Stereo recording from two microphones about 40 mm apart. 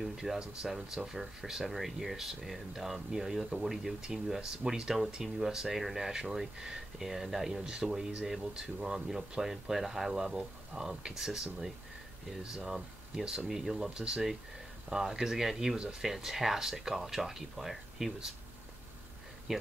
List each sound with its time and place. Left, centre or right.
0.0 s speech: centre
0.4 s speech: centre
13.5 s speech: centre
13.8 s speech: centre
19.5 s speech: centre